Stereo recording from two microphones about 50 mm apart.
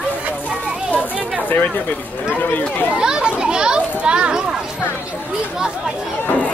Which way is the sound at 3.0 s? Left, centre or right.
Centre.